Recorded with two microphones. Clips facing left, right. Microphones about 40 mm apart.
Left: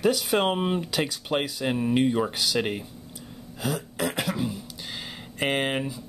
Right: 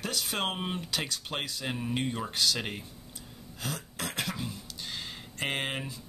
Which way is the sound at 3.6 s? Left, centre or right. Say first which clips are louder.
Left 9 dB; centre.